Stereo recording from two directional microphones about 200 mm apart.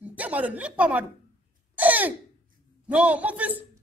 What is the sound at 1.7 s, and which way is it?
Throat clearing, 10° right (ahead or behind).